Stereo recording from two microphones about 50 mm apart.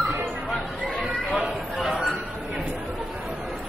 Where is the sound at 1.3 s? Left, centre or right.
Centre.